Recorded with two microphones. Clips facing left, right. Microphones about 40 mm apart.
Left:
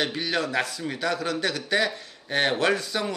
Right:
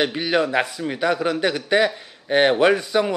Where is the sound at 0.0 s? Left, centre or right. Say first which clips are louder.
Right 6 dB; right.